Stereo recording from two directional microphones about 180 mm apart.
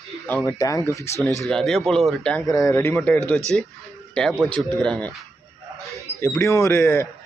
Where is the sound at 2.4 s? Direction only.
15° left (ahead or behind).